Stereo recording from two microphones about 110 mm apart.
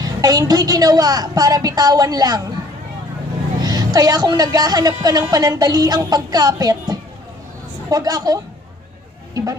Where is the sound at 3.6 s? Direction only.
35° right (ahead or behind).